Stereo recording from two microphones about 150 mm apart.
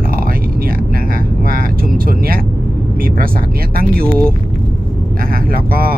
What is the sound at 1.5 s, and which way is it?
Speech, 75° right (ahead or behind).